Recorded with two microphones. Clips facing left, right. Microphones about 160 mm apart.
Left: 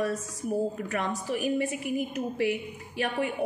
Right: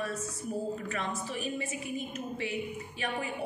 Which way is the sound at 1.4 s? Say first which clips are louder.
Left 7 dB; 65° left (ahead or behind).